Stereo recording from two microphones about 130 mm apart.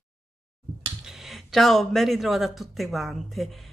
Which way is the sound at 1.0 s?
5° right (ahead or behind).